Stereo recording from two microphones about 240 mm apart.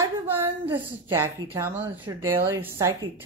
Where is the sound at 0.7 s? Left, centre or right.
Centre.